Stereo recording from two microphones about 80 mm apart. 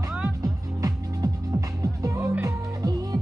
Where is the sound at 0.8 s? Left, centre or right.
Right.